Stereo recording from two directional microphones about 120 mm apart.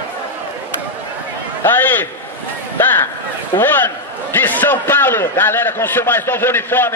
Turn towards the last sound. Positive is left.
turn(degrees=20)  # may be behind; listen again after turning